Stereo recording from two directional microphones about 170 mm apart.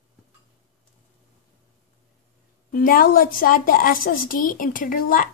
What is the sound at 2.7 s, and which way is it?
A woman's voice, 55° left (ahead or behind).